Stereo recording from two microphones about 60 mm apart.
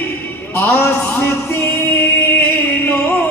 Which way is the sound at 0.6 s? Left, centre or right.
Left.